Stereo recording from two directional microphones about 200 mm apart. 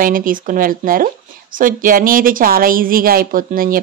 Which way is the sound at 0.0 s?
45° right (ahead or behind).